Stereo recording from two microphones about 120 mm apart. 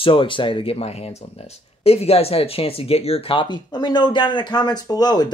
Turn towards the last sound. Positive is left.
turn(degrees=35)  # may be behind; listen again after turning